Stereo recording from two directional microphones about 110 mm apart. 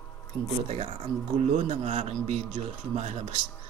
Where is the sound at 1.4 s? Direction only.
85° right.